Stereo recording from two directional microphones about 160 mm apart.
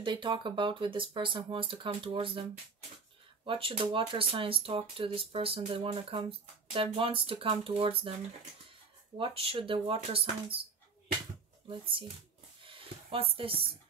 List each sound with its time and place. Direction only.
0.0 s speech: 30° right (ahead or behind)
3.4 s speech: 35° right (ahead or behind)
9.2 s speech: 35° right (ahead or behind)
12.6 s a sound: 35° right (ahead or behind)